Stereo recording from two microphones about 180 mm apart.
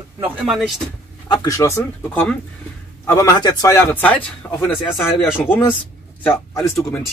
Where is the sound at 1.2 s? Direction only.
20° left (ahead or behind).